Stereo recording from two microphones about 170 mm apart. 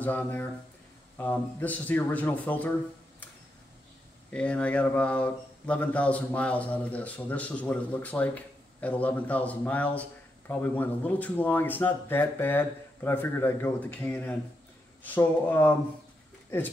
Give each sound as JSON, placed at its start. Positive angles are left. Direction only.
{"t": 0.0, "sound": "speech", "side_deg": 10}
{"t": 4.3, "sound": "speech", "side_deg": 5}